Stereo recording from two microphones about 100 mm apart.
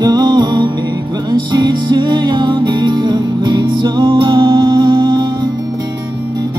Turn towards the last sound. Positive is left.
turn(degrees=-45)  # may be behind; listen again after turning